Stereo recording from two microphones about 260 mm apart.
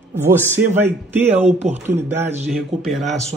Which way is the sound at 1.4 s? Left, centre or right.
Right.